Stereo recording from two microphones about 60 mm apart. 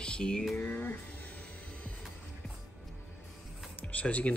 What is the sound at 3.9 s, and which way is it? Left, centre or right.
Speech, left.